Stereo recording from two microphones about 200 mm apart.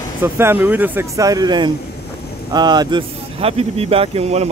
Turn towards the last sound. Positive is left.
turn(degrees=-30)  # may be behind; listen again after turning